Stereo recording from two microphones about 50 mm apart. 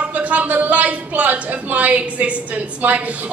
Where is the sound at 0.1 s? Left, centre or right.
Right.